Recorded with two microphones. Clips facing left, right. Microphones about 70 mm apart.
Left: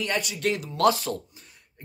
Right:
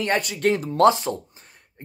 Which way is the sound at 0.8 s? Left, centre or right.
Right.